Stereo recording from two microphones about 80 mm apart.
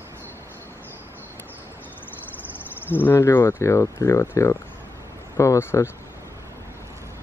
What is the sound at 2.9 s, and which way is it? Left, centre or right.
Cricket, left.